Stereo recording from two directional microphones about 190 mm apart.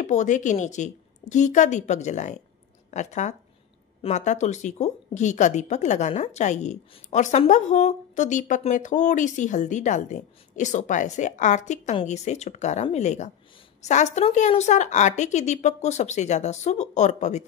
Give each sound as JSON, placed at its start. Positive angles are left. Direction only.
{"t": 0.0, "sound": "a woman's voice", "side_deg": 40}